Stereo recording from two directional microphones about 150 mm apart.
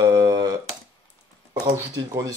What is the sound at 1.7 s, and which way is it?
Speech, 20° right (ahead or behind).